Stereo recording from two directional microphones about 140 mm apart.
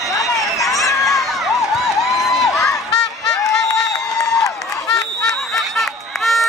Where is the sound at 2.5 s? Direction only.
5° left (ahead or behind).